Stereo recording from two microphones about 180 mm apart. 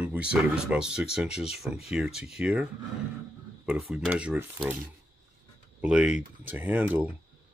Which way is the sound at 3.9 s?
5° right (ahead or behind).